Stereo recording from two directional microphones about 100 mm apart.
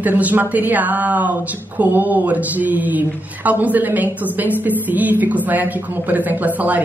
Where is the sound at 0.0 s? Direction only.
15° right (ahead or behind).